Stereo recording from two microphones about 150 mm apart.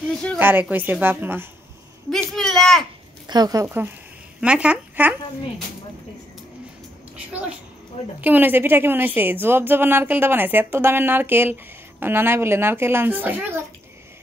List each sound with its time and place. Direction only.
0.4 s a woman's voice: 15° right (ahead or behind)
2.0 s a sound: centre (ahead or behind)
3.3 s speech: 25° right (ahead or behind)
3.6 s a woman's voice: 15° right (ahead or behind)
8.2 s a woman's voice: 10° right (ahead or behind)